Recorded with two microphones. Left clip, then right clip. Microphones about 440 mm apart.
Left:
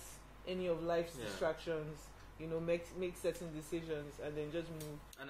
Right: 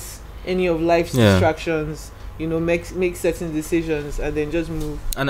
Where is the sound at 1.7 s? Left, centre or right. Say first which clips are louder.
Right 18 dB; right.